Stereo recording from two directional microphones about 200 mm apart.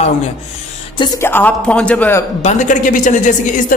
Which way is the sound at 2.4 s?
35° left (ahead or behind).